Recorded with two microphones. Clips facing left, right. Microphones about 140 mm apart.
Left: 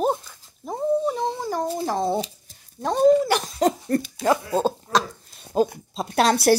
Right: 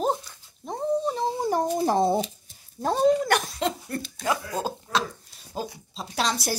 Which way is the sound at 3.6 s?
40° left (ahead or behind).